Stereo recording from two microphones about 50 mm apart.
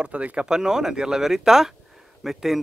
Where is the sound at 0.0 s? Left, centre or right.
Right.